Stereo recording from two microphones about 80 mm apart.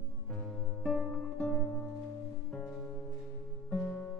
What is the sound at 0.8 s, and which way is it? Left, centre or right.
Music, centre.